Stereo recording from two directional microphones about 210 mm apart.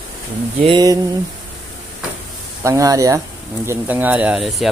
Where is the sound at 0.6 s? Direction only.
20° right (ahead or behind).